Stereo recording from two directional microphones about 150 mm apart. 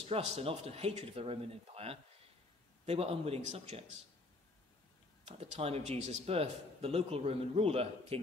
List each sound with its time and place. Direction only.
0.0 s speech: 40° right (ahead or behind)
5.2 s speech: 45° right (ahead or behind)